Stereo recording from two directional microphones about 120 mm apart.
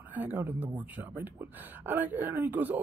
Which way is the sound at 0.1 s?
15° right (ahead or behind).